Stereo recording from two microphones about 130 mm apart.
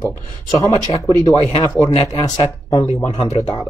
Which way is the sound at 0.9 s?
25° left (ahead or behind).